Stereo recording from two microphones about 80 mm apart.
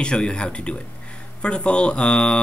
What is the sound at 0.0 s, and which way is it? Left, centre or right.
Speech, centre.